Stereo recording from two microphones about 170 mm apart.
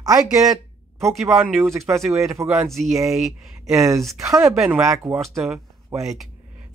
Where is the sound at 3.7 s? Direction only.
20° right (ahead or behind).